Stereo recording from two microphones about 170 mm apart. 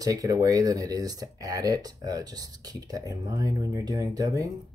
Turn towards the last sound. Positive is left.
turn(degrees=-20)  # may be behind; listen again after turning